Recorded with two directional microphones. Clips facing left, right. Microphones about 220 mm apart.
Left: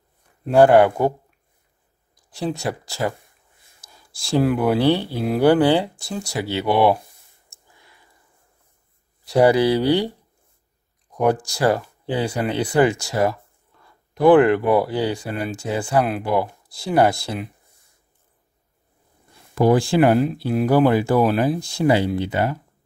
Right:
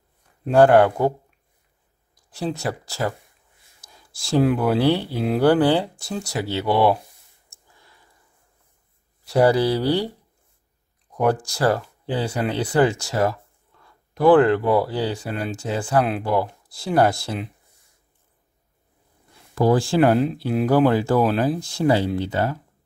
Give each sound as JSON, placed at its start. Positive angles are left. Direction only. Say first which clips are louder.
{"t": 0.5, "sound": "speech", "louder": "left 1 dB", "side_deg": 10}
{"t": 2.3, "sound": "speech", "louder": "left 1 dB", "side_deg": 15}
{"t": 3.8, "sound": "a sound", "louder": "left 1 dB", "side_deg": 10}
{"t": 5.2, "sound": "speech", "louder": "left 1 dB", "side_deg": 10}
{"t": 9.4, "sound": "speech", "louder": "left 2 dB", "side_deg": 15}
{"t": 11.2, "sound": "speech", "louder": "left 1 dB", "side_deg": 15}
{"t": 19.5, "sound": "speech", "louder": "left 2 dB", "side_deg": 15}